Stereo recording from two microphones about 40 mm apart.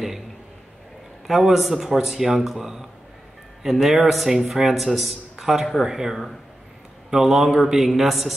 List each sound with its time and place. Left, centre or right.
1.2 s a man's voice: centre